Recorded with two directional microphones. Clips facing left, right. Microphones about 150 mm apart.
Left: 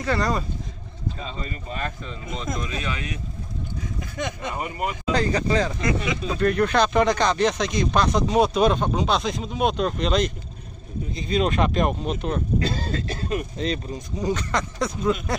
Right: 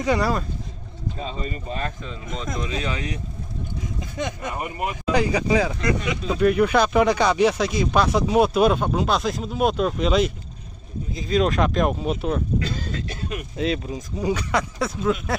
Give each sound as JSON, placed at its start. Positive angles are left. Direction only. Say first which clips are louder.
{"t": 0.0, "sound": "speech", "louder": "right 3 dB", "side_deg": -15}
{"t": 2.0, "sound": "speech", "louder": "even", "side_deg": 0}
{"t": 2.6, "sound": "speech", "louder": "right 3 dB", "side_deg": -25}
{"t": 4.2, "sound": "speech", "louder": "right 1 dB", "side_deg": -10}
{"t": 12.5, "sound": "throat clearing", "louder": "left 2 dB", "side_deg": 35}
{"t": 13.6, "sound": "speech", "louder": "right 2 dB", "side_deg": -5}